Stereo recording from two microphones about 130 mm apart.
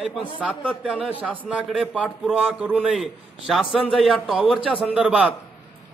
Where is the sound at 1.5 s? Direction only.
5° right (ahead or behind).